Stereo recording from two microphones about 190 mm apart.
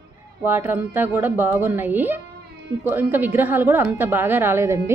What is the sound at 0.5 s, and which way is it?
A woman's voice, 10° right (ahead or behind).